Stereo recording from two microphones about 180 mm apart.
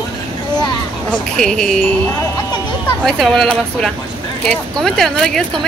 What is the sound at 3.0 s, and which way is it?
Speech, centre (ahead or behind).